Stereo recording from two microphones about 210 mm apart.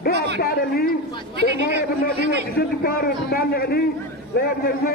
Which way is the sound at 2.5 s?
45° left (ahead or behind).